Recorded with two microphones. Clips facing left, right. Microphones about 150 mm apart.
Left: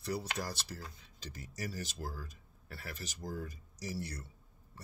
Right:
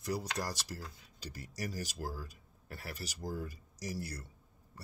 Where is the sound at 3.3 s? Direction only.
40° right (ahead or behind).